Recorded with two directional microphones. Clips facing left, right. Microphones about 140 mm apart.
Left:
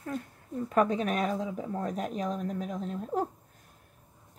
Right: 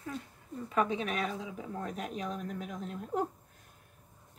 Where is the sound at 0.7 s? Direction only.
45° left (ahead or behind).